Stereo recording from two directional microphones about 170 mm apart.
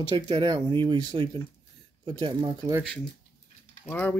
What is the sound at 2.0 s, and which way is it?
Speech, 30° right (ahead or behind).